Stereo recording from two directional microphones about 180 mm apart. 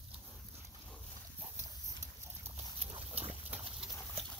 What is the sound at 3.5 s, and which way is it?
Pig, centre (ahead or behind).